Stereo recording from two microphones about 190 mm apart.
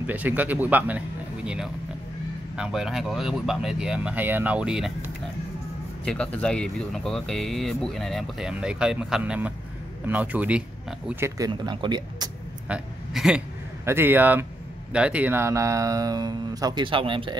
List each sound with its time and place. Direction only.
0.0 s speech: 10° right (ahead or behind)
6.0 s speech: 5° left (ahead or behind); by 12.3 s 25° right (ahead or behind)
12.6 s a sound: 5° right (ahead or behind)
13.8 s speech: 10° right (ahead or behind); by 17.4 s 25° right (ahead or behind)